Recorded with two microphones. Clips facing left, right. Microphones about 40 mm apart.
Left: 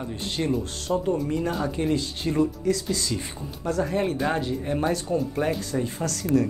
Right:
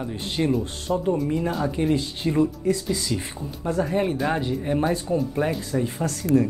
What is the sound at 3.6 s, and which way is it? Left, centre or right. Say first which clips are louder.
Speech: right 1 dB; right.